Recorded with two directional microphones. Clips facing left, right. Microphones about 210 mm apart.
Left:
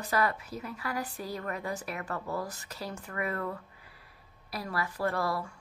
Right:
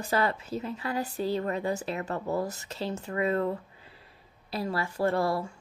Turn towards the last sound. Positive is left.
turn(degrees=-25)  # may be behind; listen again after turning